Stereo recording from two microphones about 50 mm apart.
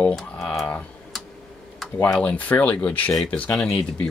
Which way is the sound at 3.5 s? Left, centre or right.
Centre.